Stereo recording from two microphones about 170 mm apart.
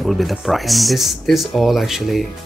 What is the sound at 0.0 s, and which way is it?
Speech, centre (ahead or behind).